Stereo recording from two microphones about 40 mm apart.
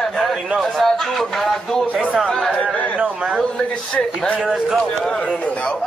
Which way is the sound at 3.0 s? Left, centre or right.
Right.